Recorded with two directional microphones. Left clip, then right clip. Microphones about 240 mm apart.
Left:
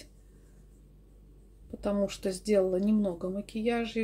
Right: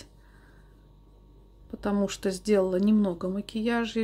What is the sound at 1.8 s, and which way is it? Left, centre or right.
Speech, centre.